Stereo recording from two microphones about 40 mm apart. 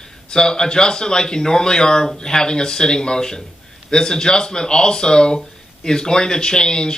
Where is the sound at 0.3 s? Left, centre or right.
Centre.